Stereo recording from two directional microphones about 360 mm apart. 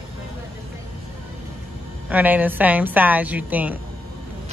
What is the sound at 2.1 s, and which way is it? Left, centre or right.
A woman's voice, centre.